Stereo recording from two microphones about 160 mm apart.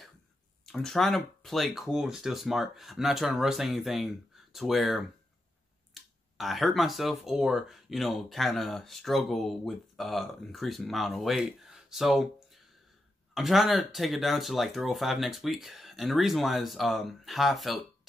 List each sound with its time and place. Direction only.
0.7 s speech: centre (ahead or behind)
13.3 s speech: centre (ahead or behind)